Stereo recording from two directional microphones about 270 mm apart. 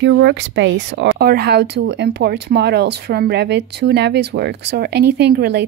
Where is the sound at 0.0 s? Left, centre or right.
Right.